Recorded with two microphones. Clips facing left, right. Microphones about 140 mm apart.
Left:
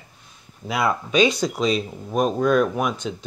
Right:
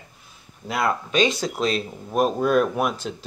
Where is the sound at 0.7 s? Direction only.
Centre (ahead or behind).